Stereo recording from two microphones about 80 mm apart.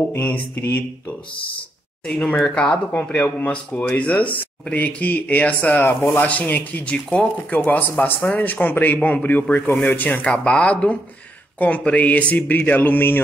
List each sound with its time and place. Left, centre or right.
0.2 s speech: centre
2.0 s speech: centre
9.6 s speech: centre
9.8 s speech: left